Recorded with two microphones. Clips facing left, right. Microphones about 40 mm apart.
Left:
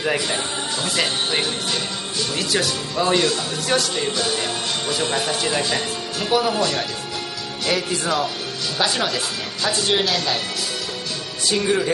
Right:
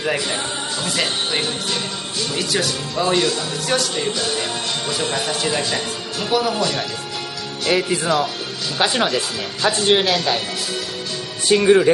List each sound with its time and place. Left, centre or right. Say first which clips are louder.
0.0 s speech: even; centre
7.7 s speech: right 4 dB; centre
8.7 s speech: right 4 dB; right
9.7 s speech: right 5 dB; right
11.4 s speech: right 7 dB; right